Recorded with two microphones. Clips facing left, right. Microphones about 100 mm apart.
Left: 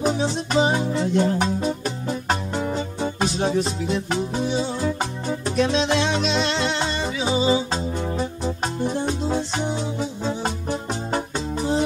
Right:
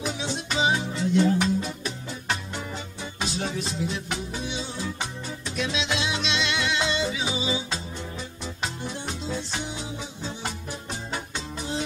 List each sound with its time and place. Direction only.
0.0 s music: 45° left (ahead or behind)